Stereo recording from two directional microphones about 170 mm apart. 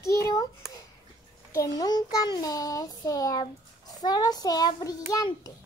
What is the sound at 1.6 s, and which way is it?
A child's voice, 25° left (ahead or behind).